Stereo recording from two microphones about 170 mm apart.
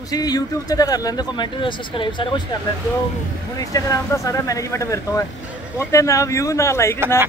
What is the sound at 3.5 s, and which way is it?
Speech, 20° left (ahead or behind).